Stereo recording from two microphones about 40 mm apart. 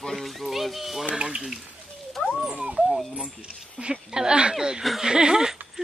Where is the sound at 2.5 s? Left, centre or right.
Right.